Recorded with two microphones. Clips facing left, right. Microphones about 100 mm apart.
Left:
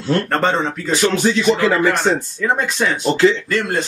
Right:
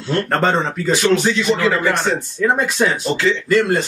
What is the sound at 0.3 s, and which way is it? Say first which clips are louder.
Speech: even; centre (ahead or behind).